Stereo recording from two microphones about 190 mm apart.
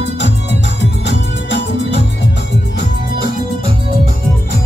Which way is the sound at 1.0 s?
65° left (ahead or behind).